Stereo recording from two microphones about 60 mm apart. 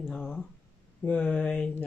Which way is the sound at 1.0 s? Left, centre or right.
Left.